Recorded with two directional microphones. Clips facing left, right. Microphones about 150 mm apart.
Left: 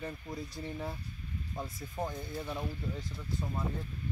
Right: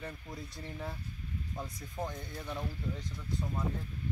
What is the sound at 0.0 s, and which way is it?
Speech, 5° left (ahead or behind).